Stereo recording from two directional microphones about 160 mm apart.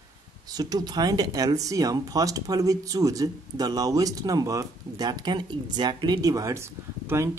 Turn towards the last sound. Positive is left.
turn(degrees=-15)  # may be behind; listen again after turning